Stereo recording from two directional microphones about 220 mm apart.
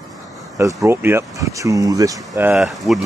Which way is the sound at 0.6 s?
15° right (ahead or behind).